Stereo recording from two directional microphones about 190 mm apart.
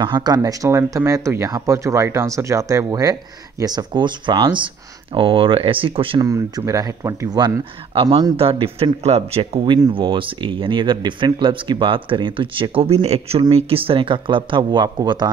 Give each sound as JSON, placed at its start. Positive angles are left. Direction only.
{"t": 0.0, "sound": "speech", "side_deg": -20}